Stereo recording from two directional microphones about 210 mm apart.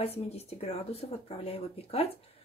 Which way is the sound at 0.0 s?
30° left (ahead or behind).